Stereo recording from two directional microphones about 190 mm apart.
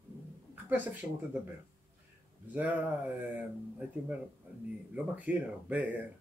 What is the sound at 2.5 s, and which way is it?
Speech, 10° right (ahead or behind).